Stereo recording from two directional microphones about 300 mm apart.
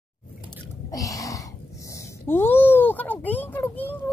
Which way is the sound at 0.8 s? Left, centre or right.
Centre.